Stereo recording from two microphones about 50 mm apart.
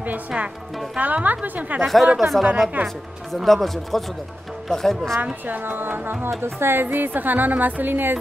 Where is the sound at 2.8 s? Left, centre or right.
Right.